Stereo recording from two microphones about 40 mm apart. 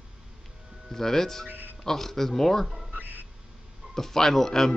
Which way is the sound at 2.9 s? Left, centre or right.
Right.